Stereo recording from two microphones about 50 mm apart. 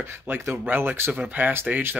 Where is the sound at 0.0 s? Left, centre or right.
Right.